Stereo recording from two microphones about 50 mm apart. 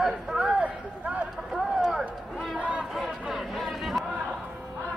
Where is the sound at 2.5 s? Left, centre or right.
Right.